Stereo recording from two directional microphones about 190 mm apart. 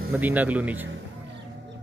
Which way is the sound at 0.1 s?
10° right (ahead or behind).